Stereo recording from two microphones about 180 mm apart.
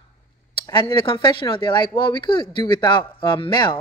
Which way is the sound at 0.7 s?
25° left (ahead or behind).